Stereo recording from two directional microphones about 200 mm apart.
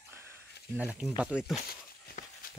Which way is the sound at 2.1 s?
50° left (ahead or behind).